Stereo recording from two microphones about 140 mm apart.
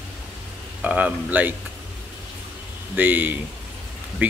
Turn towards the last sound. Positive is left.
turn(degrees=-15)  # may be behind; listen again after turning